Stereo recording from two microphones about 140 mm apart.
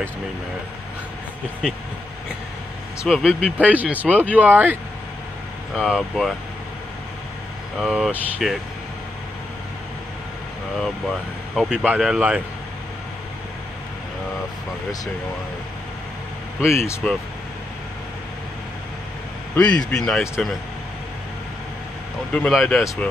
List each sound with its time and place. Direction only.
3.1 s speech: centre (ahead or behind)
3.5 s speech: 10° right (ahead or behind)
5.8 s speech: centre (ahead or behind)
7.8 s speech: 5° right (ahead or behind)
10.8 s speech: centre (ahead or behind)
16.6 s speech: 20° left (ahead or behind)
19.5 s a man's voice: 10° left (ahead or behind)
22.5 s speech: centre (ahead or behind)